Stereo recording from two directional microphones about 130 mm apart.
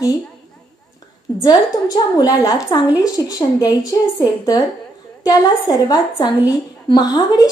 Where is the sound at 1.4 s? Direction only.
30° left (ahead or behind).